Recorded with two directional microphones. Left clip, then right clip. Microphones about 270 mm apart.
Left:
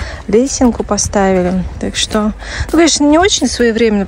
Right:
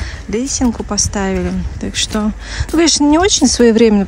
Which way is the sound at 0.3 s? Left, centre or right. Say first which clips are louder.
Left 7 dB; centre.